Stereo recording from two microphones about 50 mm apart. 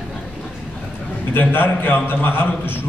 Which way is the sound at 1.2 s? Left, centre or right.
Left.